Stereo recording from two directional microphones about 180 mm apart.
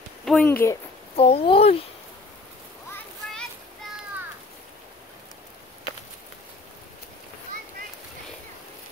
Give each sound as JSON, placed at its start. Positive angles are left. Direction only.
{"t": 0.2, "sound": "a sound", "side_deg": 0}
{"t": 0.5, "sound": "speech", "side_deg": 10}
{"t": 1.1, "sound": "a child's voice", "side_deg": 35}